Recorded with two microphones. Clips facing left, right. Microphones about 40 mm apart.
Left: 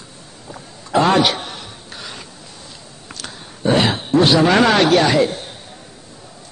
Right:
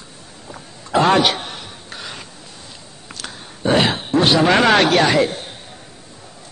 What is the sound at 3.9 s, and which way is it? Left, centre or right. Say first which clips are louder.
Speech: left 2 dB; right.